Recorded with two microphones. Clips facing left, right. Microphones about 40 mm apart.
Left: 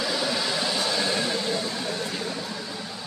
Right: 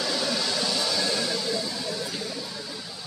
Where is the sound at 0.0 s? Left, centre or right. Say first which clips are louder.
Left 1 dB; centre; by 3.1 s left.